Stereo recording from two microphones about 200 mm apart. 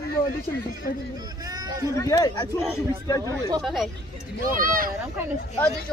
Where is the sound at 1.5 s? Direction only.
20° right (ahead or behind).